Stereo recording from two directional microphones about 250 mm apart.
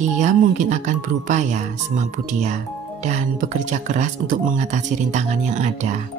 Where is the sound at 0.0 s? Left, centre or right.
Right.